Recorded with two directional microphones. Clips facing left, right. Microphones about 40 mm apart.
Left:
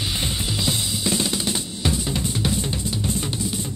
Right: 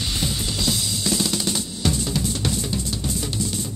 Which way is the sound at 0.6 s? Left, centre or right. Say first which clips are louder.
Even; left.